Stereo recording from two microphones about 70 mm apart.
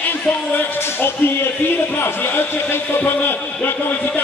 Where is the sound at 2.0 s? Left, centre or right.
Left.